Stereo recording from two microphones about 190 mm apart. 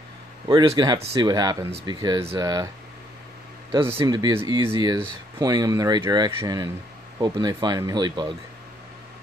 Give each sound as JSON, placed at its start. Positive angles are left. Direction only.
{"t": 0.5, "sound": "speech", "side_deg": -20}
{"t": 3.9, "sound": "speech", "side_deg": -20}